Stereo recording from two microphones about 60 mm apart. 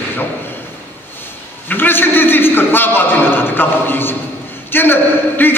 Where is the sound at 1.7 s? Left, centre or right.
Left.